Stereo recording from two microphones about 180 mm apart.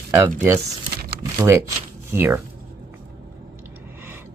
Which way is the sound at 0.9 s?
60° right (ahead or behind).